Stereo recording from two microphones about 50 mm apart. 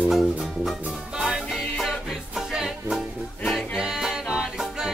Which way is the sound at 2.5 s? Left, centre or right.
Centre.